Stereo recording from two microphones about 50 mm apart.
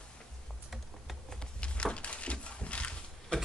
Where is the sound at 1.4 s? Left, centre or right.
Left.